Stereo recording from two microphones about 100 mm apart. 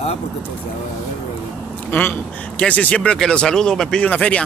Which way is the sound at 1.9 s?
20° left (ahead or behind).